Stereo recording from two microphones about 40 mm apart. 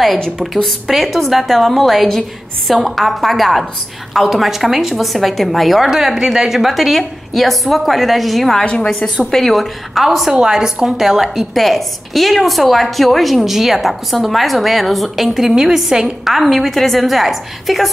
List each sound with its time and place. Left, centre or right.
0.8 s a woman's voice: centre
8.8 s a woman's voice: centre
9.3 s a woman's voice: centre
10.3 s a woman's voice: centre
11.2 s a woman's voice: centre